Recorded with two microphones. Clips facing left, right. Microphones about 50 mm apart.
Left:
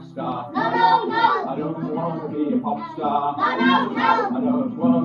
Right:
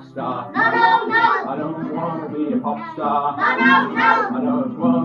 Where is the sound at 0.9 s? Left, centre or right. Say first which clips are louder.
Right 2 dB; right.